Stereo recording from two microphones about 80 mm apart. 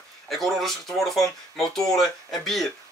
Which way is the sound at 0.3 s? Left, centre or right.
Centre.